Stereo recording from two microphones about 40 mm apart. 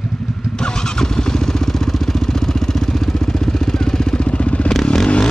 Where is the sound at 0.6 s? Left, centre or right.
Centre; by 4.7 s left.